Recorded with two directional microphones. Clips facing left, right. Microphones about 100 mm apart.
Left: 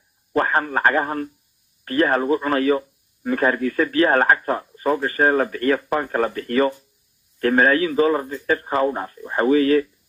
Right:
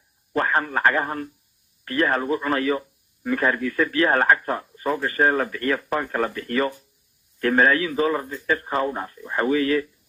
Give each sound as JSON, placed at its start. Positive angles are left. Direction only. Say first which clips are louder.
{"t": 0.3, "sound": "speech", "louder": "left 2 dB", "side_deg": 35}